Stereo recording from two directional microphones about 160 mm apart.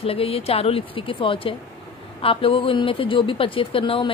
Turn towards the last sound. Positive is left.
turn(degrees=35)  # may be behind; listen again after turning